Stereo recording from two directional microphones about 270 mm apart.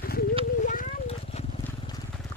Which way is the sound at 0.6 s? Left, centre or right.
Left.